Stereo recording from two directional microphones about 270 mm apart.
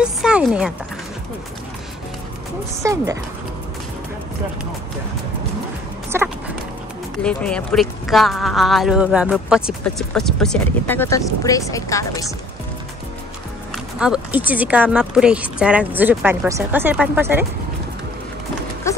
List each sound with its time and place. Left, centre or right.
0.0 s speech: centre
2.8 s speech: centre
6.1 s speech: centre
7.2 s speech: centre
13.9 s speech: centre
18.9 s a sound: centre